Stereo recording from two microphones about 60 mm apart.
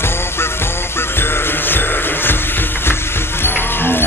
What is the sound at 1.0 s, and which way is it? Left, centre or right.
Jingle bell, left.